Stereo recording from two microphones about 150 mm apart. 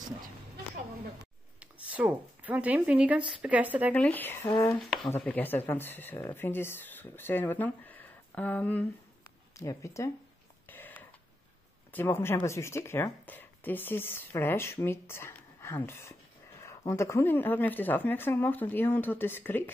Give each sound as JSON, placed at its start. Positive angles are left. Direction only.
{"t": 1.6, "sound": "speech", "side_deg": -10}
{"t": 3.9, "sound": "speech", "side_deg": 10}
{"t": 10.7, "sound": "a sound", "side_deg": 10}
{"t": 11.9, "sound": "speech", "side_deg": 15}